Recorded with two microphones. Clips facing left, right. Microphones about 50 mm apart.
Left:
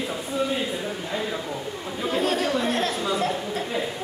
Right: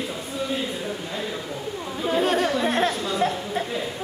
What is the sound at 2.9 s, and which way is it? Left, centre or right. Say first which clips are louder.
Speech: left 1 dB; centre.